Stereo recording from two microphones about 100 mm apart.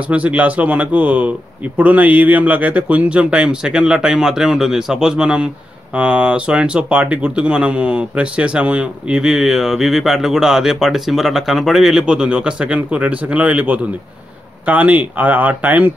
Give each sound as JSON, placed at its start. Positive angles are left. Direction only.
{"t": 0.1, "sound": "speech", "side_deg": -15}